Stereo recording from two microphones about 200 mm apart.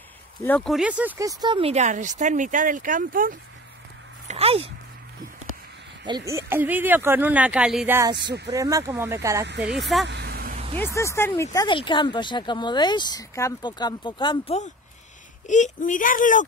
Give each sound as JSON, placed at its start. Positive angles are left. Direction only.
{"t": 0.4, "sound": "speech", "side_deg": 5}
{"t": 4.3, "sound": "speech", "side_deg": -30}
{"t": 6.0, "sound": "speech", "side_deg": -20}
{"t": 9.8, "sound": "speech", "side_deg": 0}
{"t": 10.0, "sound": "vehicle", "side_deg": -55}
{"t": 10.8, "sound": "speech", "side_deg": 15}